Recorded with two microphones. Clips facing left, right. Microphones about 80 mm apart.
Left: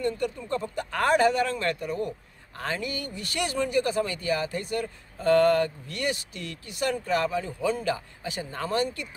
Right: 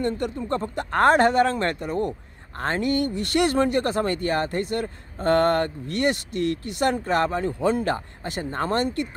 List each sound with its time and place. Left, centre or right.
0.7 s speech: right
2.6 s speech: right